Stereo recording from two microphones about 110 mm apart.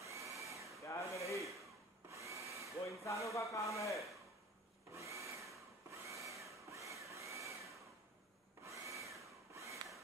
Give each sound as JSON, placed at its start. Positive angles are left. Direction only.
{"t": 0.0, "sound": "drill", "side_deg": -30}
{"t": 0.4, "sound": "a sound", "side_deg": -30}
{"t": 0.8, "sound": "rub", "side_deg": 30}
{"t": 2.0, "sound": "drill", "side_deg": -30}
{"t": 2.8, "sound": "a sound", "side_deg": 30}
{"t": 3.5, "sound": "speech", "side_deg": 30}
{"t": 4.9, "sound": "wood", "side_deg": -30}
{"t": 5.9, "sound": "vacuum cleaner", "side_deg": -30}
{"t": 6.7, "sound": "a sound", "side_deg": -30}